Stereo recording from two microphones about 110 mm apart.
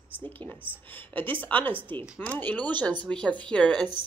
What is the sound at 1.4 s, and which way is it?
A woman's voice, 15° left (ahead or behind).